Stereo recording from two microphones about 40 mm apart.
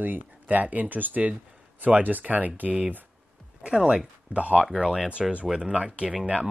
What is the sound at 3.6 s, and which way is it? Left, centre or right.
Speech, right.